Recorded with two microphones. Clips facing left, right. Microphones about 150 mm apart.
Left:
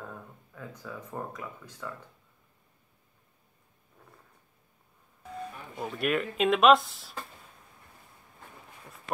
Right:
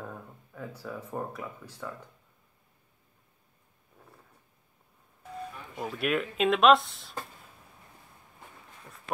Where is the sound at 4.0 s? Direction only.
5° right (ahead or behind).